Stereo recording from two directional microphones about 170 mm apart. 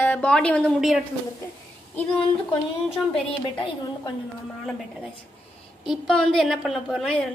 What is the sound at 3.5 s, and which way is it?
Speech, 30° left (ahead or behind).